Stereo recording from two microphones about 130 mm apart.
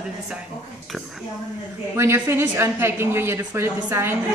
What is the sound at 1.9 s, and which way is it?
A woman's voice, 20° right (ahead or behind).